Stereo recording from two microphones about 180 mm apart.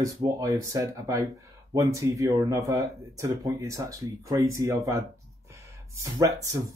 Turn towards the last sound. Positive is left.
turn(degrees=-20)  # may be behind; listen again after turning